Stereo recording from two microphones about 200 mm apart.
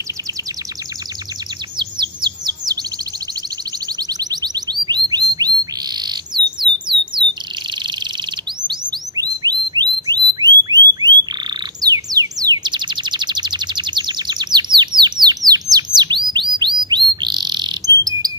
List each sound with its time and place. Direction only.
1.8 s chirp: 25° right (ahead or behind)
4.1 s bird: 20° right (ahead or behind)
8.6 s bird: 20° right (ahead or behind)
11.8 s chirp: 20° right (ahead or behind)